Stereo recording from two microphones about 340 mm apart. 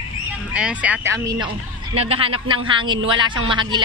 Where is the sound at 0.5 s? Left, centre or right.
Centre.